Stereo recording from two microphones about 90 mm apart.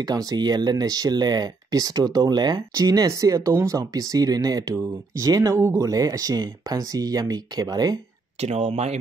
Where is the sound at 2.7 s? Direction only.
40° right (ahead or behind).